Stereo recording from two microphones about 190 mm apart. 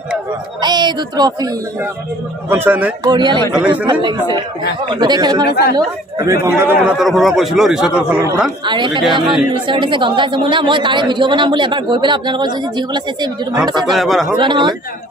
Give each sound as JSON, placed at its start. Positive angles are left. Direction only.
{"t": 0.6, "sound": "speech", "side_deg": -20}
{"t": 2.5, "sound": "a man's voice", "side_deg": -10}
{"t": 3.1, "sound": "speech", "side_deg": -25}
{"t": 3.5, "sound": "a man's voice", "side_deg": -5}
{"t": 3.8, "sound": "a man's voice", "side_deg": -20}
{"t": 8.6, "sound": "speech", "side_deg": -25}
{"t": 13.8, "sound": "a man's voice", "side_deg": 0}
{"t": 14.3, "sound": "speech", "side_deg": -25}